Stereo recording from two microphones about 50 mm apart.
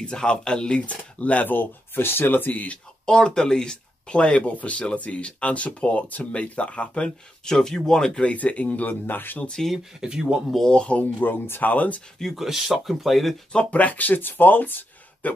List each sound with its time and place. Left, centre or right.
0.0 s speech: centre
3.1 s speech: centre
7.4 s speech: centre
8.2 s speech: left
9.9 s speech: centre
10.7 s speech: left
11.1 s speech: left
11.6 s speech: left
12.4 s speech: centre
13.7 s speech: left